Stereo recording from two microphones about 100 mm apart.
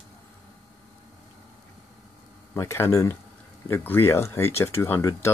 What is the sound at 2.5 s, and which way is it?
Speech, 25° left (ahead or behind).